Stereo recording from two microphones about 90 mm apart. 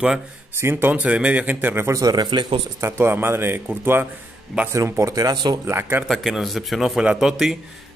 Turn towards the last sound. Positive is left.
turn(degrees=-5)  # may be behind; listen again after turning